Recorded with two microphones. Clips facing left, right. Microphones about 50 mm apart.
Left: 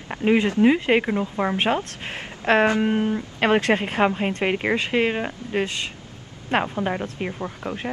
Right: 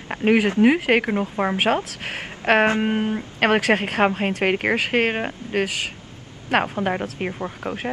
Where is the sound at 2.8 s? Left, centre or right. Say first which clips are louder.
Even; right.